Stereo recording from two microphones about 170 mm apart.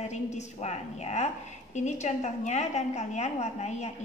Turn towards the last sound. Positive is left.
turn(degrees=40)  # may be behind; listen again after turning